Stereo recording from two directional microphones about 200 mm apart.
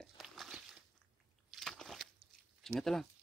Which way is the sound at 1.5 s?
Centre (ahead or behind).